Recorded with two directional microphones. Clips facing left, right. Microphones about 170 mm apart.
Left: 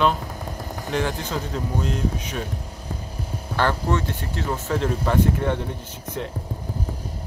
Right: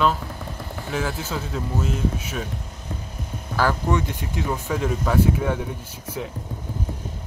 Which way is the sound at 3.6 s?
10° right (ahead or behind).